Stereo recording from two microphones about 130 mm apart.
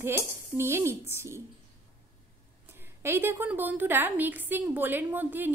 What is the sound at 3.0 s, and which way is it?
A woman's voice, 15° right (ahead or behind).